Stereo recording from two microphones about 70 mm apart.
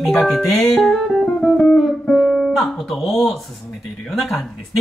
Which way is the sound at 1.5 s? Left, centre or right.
Centre.